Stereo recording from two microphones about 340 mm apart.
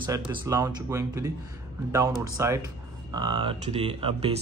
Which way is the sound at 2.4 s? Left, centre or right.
Centre.